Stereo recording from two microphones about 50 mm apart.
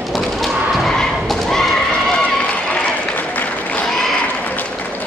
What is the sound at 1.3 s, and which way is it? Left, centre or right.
Horse, centre.